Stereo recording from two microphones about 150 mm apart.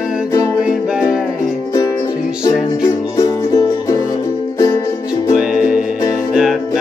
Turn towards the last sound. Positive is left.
turn(degrees=-5)  # may be behind; listen again after turning